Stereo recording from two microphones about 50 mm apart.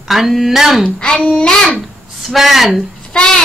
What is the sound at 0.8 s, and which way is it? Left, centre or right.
Speech, centre.